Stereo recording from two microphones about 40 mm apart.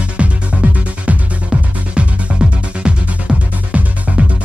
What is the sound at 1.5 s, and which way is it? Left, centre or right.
Music, centre.